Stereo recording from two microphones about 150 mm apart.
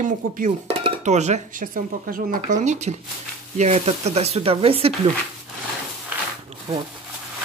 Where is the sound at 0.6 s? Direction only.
45° right (ahead or behind).